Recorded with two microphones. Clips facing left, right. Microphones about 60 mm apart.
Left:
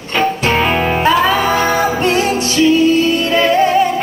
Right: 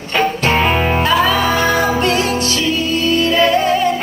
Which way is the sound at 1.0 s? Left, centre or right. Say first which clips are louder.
Left 3 dB; left.